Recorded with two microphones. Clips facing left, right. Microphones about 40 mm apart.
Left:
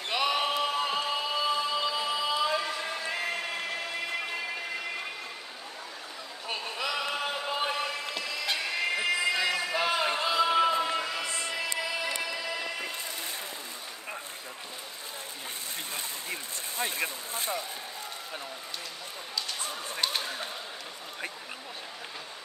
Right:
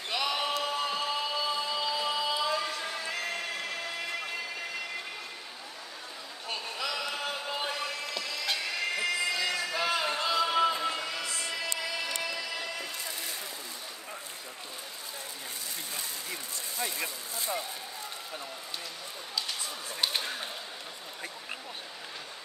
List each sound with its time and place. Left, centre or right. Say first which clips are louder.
0.1 s music: left 3 dB; centre
6.5 s a sound: left 2 dB; centre
7.2 s music: left 3 dB; centre
11.2 s music: left 2 dB; left
11.9 s music: left 2 dB; centre
15.9 s a sound: left 2 dB; left